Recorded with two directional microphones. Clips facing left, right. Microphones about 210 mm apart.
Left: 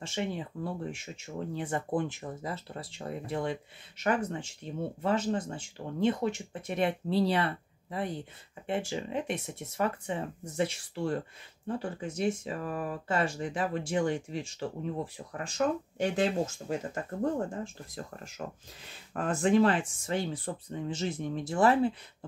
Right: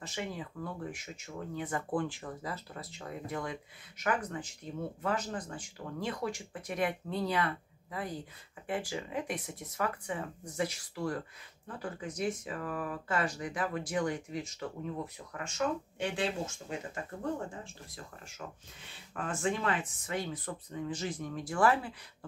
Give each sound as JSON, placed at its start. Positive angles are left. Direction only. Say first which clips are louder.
{"t": 0.0, "sound": "speech", "louder": "left 5 dB", "side_deg": 25}